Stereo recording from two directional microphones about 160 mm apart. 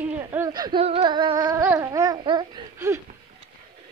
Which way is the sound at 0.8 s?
35° right (ahead or behind).